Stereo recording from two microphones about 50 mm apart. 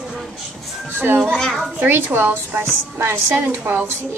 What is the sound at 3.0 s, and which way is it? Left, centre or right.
Speech, right.